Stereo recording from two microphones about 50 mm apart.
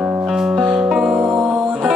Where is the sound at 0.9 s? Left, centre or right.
Centre.